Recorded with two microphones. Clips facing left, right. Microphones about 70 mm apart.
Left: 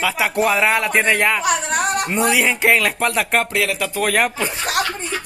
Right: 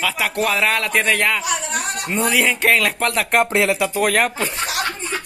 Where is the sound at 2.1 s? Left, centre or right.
Centre.